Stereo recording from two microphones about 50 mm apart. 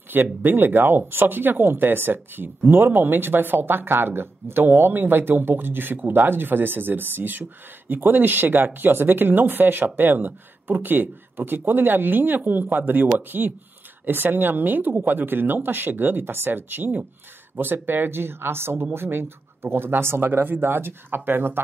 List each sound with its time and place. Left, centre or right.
0.1 s speech: right